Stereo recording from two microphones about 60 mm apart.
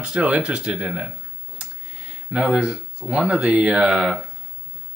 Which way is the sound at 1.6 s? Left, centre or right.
Centre.